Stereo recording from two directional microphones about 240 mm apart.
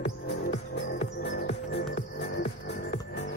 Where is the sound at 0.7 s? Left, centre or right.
Left.